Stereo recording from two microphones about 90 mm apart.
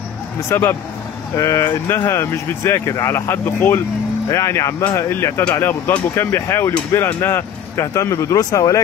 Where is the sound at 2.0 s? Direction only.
30° left (ahead or behind).